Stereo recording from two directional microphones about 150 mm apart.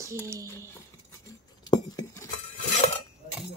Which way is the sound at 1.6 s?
30° left (ahead or behind).